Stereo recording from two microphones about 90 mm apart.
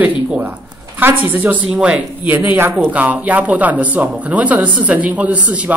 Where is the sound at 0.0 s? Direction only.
20° right (ahead or behind).